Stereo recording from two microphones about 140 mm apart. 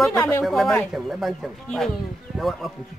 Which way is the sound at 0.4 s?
Centre (ahead or behind).